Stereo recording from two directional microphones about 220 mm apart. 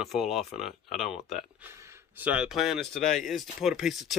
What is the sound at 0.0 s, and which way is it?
Speech, centre (ahead or behind).